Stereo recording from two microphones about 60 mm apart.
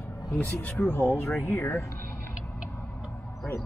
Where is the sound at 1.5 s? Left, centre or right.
Left.